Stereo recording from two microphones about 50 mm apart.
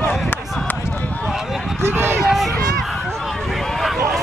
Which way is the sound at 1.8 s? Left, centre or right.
Right.